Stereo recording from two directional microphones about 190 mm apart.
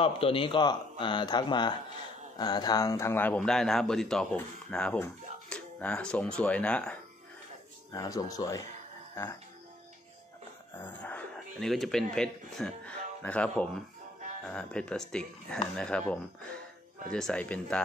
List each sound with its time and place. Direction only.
0.0 s speech: 30° left (ahead or behind); by 7.0 s 5° left (ahead or behind)
7.9 s speech: 20° left (ahead or behind)
10.8 s speech: 10° left (ahead or behind)